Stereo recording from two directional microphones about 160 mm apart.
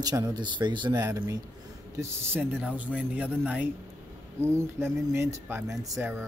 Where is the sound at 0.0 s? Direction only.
25° right (ahead or behind).